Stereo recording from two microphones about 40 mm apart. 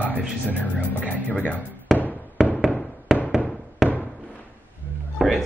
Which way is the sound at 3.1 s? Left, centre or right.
Centre.